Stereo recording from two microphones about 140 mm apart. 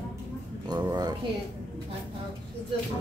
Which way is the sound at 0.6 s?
30° right (ahead or behind).